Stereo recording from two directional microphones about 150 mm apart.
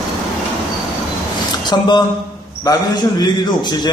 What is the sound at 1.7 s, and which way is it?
A man's voice, 30° left (ahead or behind).